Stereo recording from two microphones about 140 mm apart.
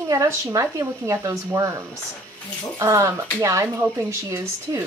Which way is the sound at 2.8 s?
20° right (ahead or behind).